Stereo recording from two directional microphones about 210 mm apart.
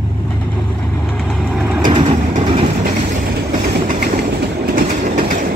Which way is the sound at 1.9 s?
30° right (ahead or behind).